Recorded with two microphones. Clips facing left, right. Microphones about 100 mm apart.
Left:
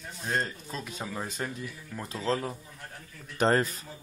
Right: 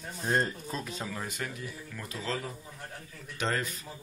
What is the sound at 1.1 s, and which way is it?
Speech, 25° left (ahead or behind).